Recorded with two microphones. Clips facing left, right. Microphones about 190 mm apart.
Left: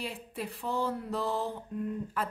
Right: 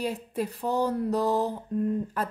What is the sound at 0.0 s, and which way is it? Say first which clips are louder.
Speech: right 8 dB; 40° right (ahead or behind).